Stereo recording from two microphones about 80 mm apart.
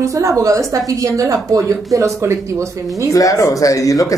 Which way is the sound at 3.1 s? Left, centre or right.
Left.